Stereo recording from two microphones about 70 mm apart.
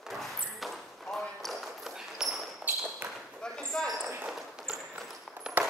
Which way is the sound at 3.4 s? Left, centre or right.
Centre.